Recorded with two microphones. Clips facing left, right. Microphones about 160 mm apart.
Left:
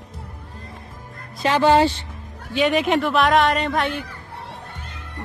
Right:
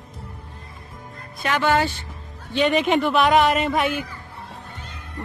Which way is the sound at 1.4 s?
30° left (ahead or behind).